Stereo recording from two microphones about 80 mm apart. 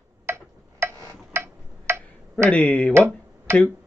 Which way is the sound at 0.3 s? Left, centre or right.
Right.